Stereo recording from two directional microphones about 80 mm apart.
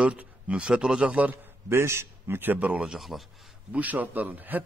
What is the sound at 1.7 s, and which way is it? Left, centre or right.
Speech, right.